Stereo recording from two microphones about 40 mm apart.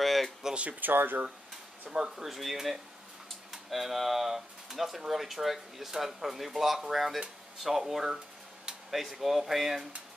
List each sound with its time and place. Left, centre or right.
0.0 s a sound: centre
0.6 s speech: right
1.9 s speech: centre